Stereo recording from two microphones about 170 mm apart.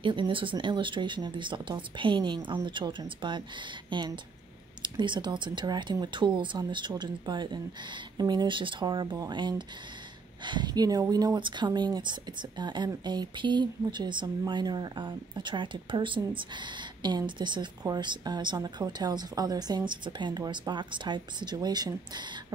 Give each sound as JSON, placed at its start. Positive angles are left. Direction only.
{"t": 0.0, "sound": "speech", "side_deg": -30}